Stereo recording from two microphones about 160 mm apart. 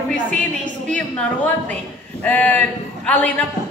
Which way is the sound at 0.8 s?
10° left (ahead or behind).